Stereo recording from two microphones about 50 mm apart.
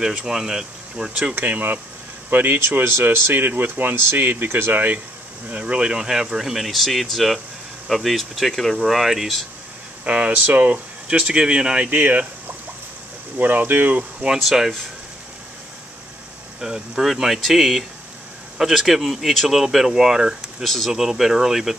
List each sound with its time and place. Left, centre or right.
0.0 s speech: centre
1.3 s speech: right
2.8 s speech: right
5.5 s speech: right; by 9.3 s centre
10.0 s speech: right
11.9 s speech: right
13.4 s speech: right
14.4 s speech: centre
16.5 s speech: centre
20.6 s speech: centre
20.9 s speech: centre